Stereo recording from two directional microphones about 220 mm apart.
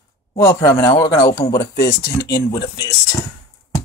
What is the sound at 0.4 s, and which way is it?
Speech, 15° left (ahead or behind).